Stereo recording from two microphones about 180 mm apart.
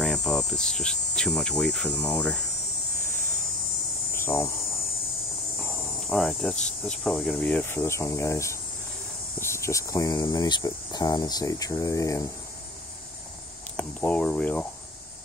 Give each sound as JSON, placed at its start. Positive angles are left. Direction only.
{"t": 0.0, "sound": "speech", "side_deg": 5}
{"t": 4.1, "sound": "hum", "side_deg": 15}
{"t": 5.6, "sound": "cricket", "side_deg": 0}
{"t": 6.9, "sound": "speech", "side_deg": 5}
{"t": 13.7, "sound": "speech", "side_deg": 10}